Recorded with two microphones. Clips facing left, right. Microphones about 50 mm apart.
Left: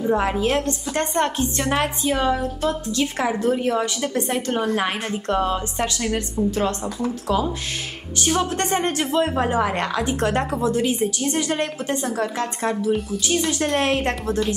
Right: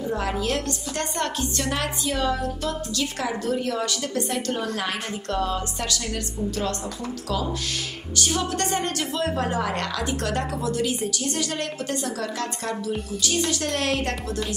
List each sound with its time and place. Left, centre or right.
0.0 s a woman's voice: left